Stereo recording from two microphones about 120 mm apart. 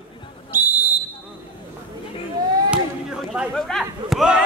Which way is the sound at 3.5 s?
Centre (ahead or behind).